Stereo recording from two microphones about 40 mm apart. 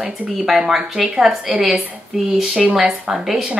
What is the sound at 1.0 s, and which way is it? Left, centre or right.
A woman's voice, centre.